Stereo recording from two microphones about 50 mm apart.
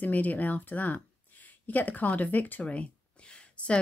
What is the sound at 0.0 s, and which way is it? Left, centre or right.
Speech, left.